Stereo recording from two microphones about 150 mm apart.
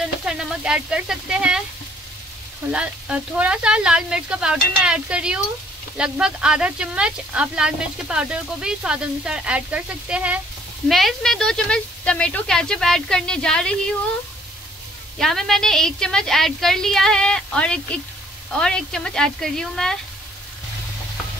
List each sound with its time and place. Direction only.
0.0 s sizzle: 5° right (ahead or behind)
2.7 s a woman's voice: 10° right (ahead or behind)
15.1 s a woman's voice: centre (ahead or behind)